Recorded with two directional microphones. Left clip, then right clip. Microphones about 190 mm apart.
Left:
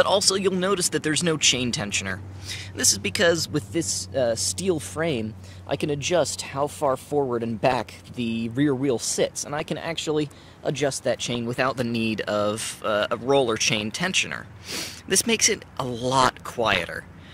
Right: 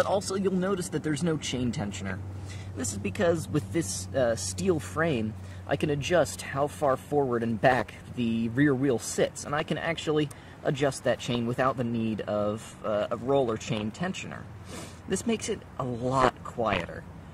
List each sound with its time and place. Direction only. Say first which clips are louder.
0.1 s speech: left 7 dB; 15° left (ahead or behind)